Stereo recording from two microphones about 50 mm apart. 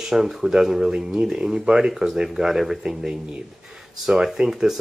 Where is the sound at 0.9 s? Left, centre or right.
Right.